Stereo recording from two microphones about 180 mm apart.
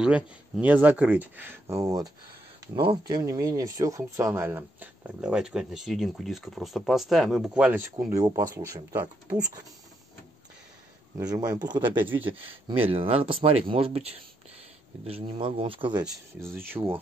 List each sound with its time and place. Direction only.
0.0 s speech: 5° right (ahead or behind)
7.9 s speech: 20° right (ahead or behind)
11.1 s speech: 20° right (ahead or behind)
16.4 s speech: 15° right (ahead or behind)